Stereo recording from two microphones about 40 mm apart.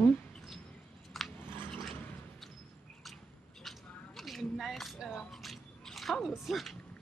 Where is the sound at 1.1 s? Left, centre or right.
Centre.